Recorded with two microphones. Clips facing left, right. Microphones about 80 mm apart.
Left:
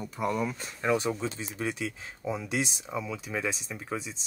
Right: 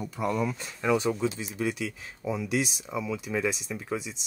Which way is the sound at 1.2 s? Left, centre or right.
Left.